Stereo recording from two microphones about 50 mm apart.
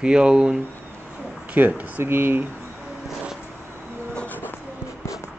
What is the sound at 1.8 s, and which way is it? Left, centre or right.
Speech, right.